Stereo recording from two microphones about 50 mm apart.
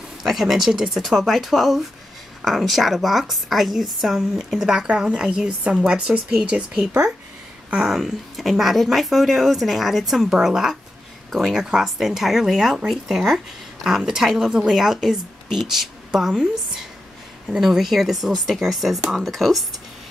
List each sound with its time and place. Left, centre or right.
0.2 s speech: centre
7.9 s a woman's voice: centre
17.5 s speech: centre